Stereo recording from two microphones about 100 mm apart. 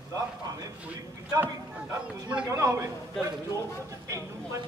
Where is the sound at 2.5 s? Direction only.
30° right (ahead or behind).